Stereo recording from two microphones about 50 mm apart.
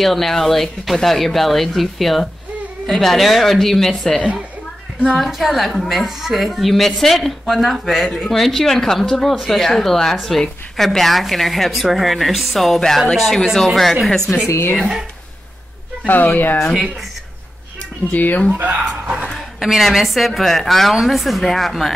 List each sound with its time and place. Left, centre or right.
0.0 s a woman's voice: centre
14.8 s speech: centre
16.1 s speech: left
18.1 s speech: left
18.6 s speech: right
19.3 s a woman's voice: centre